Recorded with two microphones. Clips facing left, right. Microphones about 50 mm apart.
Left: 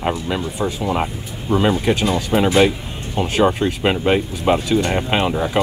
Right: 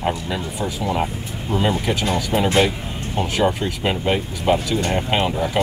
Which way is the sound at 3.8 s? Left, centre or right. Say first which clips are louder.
Left 3 dB; left.